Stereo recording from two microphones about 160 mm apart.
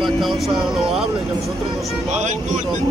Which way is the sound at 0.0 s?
Centre (ahead or behind).